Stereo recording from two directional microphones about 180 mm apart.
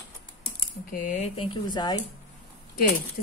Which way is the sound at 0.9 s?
45° left (ahead or behind).